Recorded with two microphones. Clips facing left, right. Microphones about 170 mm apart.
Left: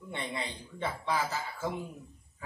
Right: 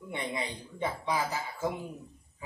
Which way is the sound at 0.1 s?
15° right (ahead or behind).